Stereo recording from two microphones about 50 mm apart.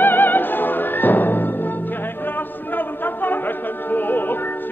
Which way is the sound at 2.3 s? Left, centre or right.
Left.